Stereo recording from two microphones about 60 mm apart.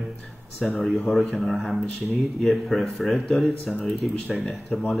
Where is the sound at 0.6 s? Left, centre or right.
Centre.